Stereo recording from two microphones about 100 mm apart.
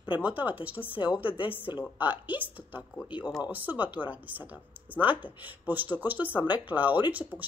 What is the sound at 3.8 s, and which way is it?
Speech, 15° right (ahead or behind).